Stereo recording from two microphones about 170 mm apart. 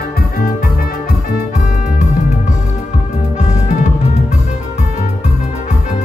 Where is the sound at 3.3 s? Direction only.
45° left (ahead or behind).